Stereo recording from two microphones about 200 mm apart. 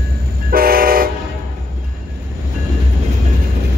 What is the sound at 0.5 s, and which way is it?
Train, 45° right (ahead or behind).